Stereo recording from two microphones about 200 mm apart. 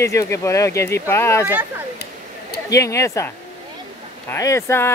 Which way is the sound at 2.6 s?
15° left (ahead or behind).